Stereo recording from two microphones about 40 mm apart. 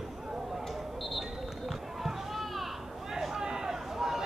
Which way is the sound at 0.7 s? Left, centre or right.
Centre.